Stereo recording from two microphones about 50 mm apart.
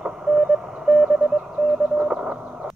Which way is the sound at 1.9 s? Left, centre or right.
Right.